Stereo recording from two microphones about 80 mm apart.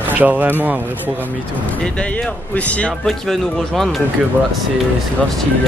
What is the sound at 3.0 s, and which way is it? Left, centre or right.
Speech, centre.